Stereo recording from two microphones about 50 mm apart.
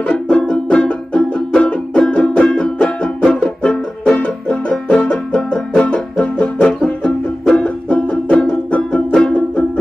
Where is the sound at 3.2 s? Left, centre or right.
Centre.